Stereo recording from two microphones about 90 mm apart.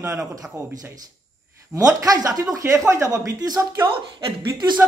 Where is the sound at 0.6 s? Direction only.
35° right (ahead or behind).